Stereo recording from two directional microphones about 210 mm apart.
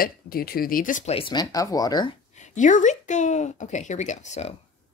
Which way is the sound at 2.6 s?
35° left (ahead or behind).